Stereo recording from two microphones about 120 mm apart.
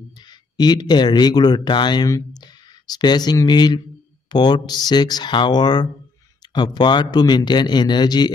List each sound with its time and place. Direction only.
0.1 s a man's voice: 35° left (ahead or behind)